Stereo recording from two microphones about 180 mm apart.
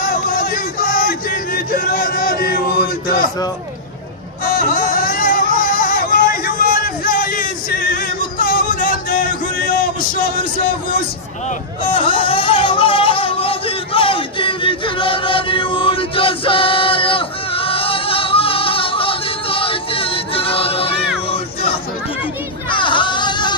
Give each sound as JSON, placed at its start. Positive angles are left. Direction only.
{"t": 0.0, "sound": "music", "side_deg": 50}
{"t": 4.5, "sound": "music", "side_deg": 50}
{"t": 11.9, "sound": "music", "side_deg": 30}
{"t": 22.7, "sound": "a sound", "side_deg": 25}